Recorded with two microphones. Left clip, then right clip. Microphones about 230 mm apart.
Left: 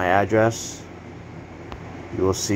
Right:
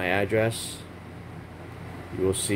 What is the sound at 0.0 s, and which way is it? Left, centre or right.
Speech, centre.